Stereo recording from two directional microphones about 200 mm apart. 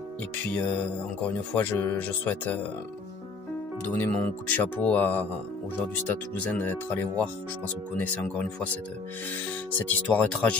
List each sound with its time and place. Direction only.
0.5 s speech: 5° left (ahead or behind)
3.9 s speech: 5° left (ahead or behind)
9.8 s speech: 5° left (ahead or behind)